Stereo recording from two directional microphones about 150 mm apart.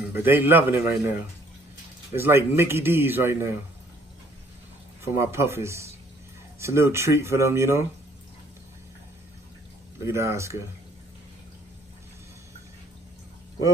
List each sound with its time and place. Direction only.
0.1 s a man's voice: 15° right (ahead or behind)
2.1 s a man's voice: 15° right (ahead or behind)
5.0 s a man's voice: 15° right (ahead or behind)
9.9 s speech: 20° right (ahead or behind)